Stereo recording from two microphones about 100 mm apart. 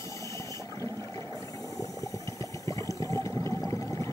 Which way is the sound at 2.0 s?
35° left (ahead or behind).